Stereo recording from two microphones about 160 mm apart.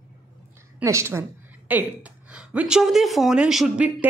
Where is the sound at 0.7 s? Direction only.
15° right (ahead or behind).